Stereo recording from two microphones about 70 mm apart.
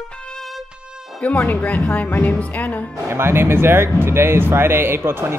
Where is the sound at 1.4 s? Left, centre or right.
Centre.